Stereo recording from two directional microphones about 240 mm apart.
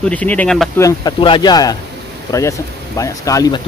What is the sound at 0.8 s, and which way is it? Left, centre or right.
Speech, centre.